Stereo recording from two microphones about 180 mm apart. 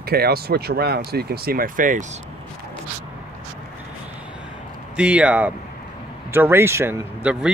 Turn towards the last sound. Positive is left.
turn(degrees=-5)  # may be behind; listen again after turning